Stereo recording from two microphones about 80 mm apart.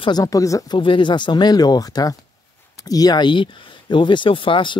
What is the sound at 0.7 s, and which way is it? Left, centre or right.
Speech, left.